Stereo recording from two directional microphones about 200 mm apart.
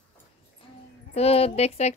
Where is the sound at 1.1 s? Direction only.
30° left (ahead or behind).